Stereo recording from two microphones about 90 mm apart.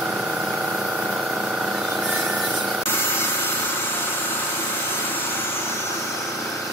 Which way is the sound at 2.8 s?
25° left (ahead or behind).